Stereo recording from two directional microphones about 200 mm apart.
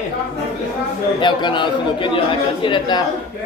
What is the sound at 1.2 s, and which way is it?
A man's voice, 25° left (ahead or behind).